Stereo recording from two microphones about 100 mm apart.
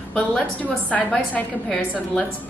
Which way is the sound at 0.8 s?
15° left (ahead or behind).